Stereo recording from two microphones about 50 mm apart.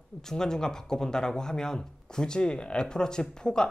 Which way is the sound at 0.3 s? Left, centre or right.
Centre.